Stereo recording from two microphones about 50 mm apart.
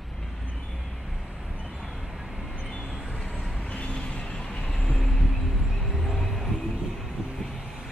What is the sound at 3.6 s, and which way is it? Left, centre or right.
Vehicle, left.